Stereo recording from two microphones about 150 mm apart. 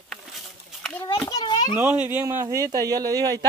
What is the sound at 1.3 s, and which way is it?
Children playing, 30° left (ahead or behind).